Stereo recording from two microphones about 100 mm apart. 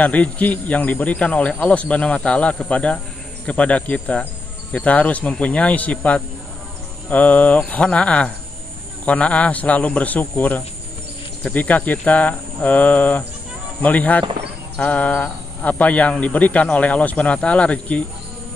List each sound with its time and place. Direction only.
0.0 s speech: 15° left (ahead or behind)
14.8 s a sound: 15° left (ahead or behind)
15.8 s speech: 15° left (ahead or behind)